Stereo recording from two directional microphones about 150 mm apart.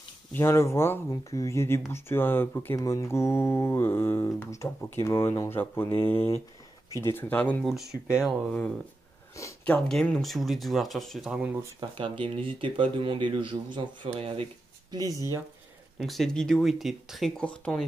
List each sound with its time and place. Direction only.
0.3 s speech: 15° left (ahead or behind)
8.1 s speech: centre (ahead or behind)
12.0 s speech: 35° right (ahead or behind)
14.9 s speech: 25° right (ahead or behind)
16.0 s speech: centre (ahead or behind)